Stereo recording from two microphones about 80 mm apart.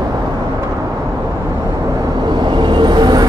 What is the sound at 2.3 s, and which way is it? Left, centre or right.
Vehicle, right.